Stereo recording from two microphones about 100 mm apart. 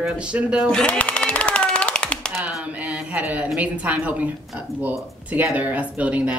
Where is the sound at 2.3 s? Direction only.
5° right (ahead or behind).